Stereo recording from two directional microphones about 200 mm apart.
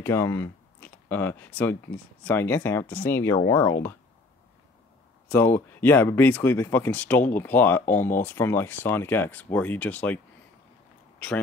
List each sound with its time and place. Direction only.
0.0 s speech: 15° left (ahead or behind)
5.3 s speech: 10° left (ahead or behind)